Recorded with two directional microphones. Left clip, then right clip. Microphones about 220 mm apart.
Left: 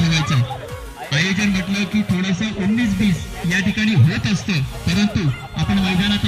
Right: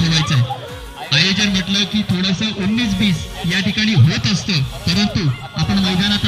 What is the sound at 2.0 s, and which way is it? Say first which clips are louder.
Music: right 3 dB; 45° left (ahead or behind).